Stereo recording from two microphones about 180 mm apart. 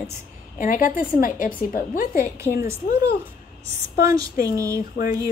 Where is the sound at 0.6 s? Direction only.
50° left (ahead or behind).